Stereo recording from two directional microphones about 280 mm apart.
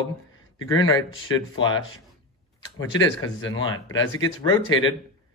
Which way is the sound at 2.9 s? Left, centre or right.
Left.